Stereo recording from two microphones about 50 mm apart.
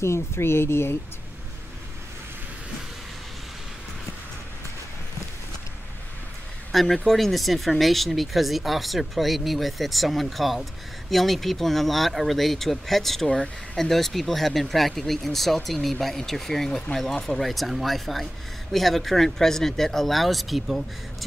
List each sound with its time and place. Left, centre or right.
0.0 s speech: left
6.7 s speech: centre